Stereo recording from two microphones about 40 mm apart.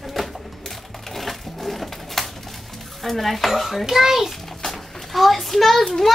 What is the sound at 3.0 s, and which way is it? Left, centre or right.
Speech, centre.